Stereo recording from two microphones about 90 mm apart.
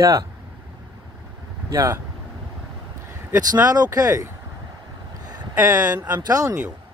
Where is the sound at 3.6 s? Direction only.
45° right (ahead or behind).